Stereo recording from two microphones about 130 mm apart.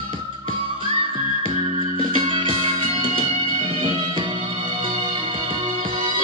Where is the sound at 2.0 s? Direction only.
40° right (ahead or behind).